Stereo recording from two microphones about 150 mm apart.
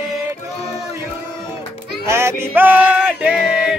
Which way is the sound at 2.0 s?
15° right (ahead or behind).